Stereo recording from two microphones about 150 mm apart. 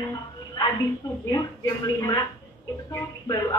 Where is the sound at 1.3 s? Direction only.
25° left (ahead or behind).